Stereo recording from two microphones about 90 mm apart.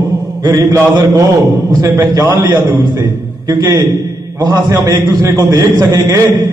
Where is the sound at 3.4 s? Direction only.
30° right (ahead or behind).